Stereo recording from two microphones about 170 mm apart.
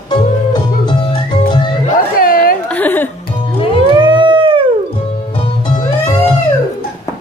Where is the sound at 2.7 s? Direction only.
10° left (ahead or behind).